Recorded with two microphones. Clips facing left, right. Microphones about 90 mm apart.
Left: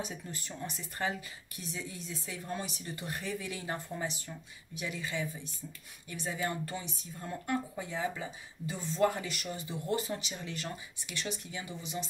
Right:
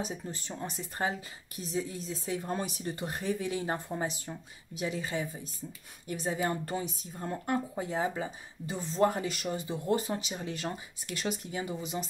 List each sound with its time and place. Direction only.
0.0 s speech: 35° right (ahead or behind)